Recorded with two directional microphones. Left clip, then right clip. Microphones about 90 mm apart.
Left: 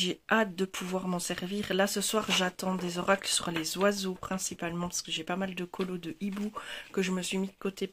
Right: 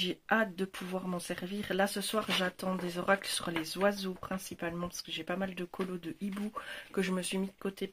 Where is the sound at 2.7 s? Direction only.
30° left (ahead or behind).